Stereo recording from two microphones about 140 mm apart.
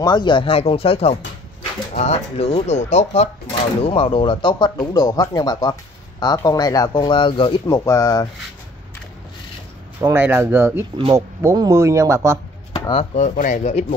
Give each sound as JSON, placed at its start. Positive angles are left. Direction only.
{"t": 0.0, "sound": "speech", "side_deg": 30}
{"t": 3.8, "sound": "speech", "side_deg": 40}
{"t": 7.6, "sound": "speech", "side_deg": 20}
{"t": 9.9, "sound": "speech", "side_deg": -15}
{"t": 12.9, "sound": "speech", "side_deg": 55}